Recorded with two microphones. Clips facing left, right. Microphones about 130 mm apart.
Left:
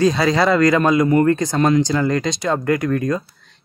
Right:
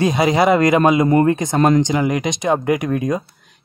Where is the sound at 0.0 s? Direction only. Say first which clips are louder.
Right 1 dB; 20° right (ahead or behind).